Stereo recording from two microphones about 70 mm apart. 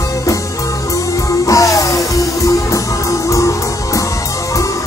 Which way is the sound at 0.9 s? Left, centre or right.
Left.